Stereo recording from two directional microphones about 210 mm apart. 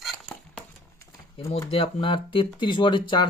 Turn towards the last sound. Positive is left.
turn(degrees=25)  # may be behind; listen again after turning